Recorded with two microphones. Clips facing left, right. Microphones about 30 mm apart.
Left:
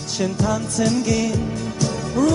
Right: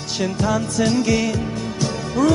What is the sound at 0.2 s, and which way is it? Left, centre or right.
Music, centre.